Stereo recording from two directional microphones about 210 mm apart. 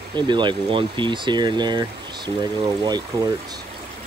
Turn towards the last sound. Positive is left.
turn(degrees=-20)  # may be behind; listen again after turning